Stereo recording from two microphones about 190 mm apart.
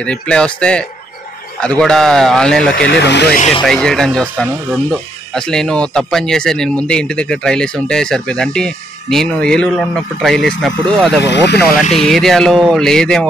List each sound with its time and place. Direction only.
0.0 s speech: 5° left (ahead or behind)
2.7 s speech: 65° left (ahead or behind)
3.3 s speech: 35° left (ahead or behind)
3.6 s speech: 5° left (ahead or behind)
11.1 s speech: 65° left (ahead or behind)
11.9 s speech: centre (ahead or behind)